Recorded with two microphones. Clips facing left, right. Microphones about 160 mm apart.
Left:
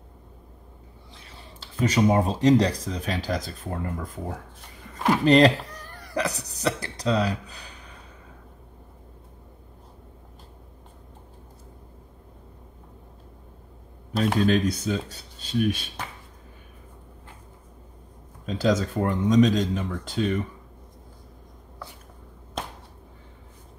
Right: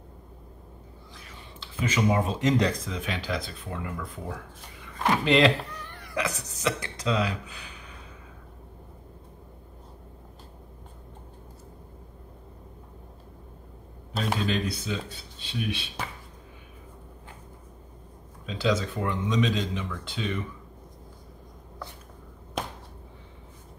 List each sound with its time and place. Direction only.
1.1 s speech: 30° left (ahead or behind)
4.9 s a sound: 5° left (ahead or behind)
5.2 s speech: 40° left (ahead or behind)
14.4 s speech: 45° left (ahead or behind)
18.4 s speech: 45° left (ahead or behind)